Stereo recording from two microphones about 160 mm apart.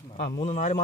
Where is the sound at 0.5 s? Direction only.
50° left (ahead or behind).